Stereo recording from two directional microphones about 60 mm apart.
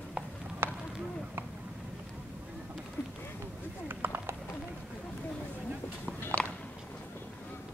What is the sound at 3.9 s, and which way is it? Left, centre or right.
Clip-clop, right.